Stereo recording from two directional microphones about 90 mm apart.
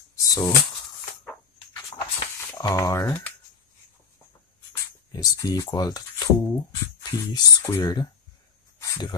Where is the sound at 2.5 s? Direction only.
40° left (ahead or behind).